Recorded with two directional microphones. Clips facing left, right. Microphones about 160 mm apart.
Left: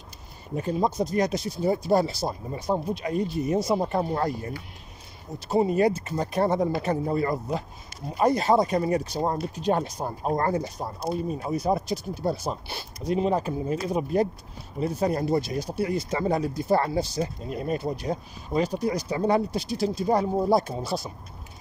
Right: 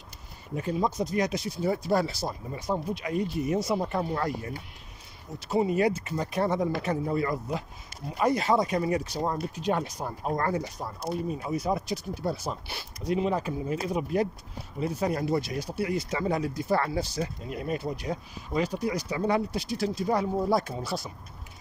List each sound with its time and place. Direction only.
0.6 s speech: 35° left (ahead or behind)